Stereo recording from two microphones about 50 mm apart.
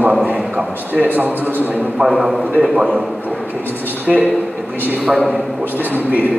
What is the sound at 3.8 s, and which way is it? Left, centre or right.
Speech, right.